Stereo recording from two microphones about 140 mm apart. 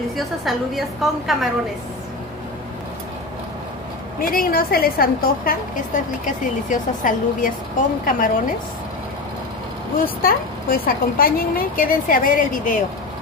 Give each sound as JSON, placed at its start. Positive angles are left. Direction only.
{"t": 0.1, "sound": "a woman's voice", "side_deg": 0}
{"t": 4.2, "sound": "a woman's voice", "side_deg": 90}
{"t": 6.2, "sound": "a woman's voice", "side_deg": 70}
{"t": 10.2, "sound": "a woman's voice", "side_deg": 90}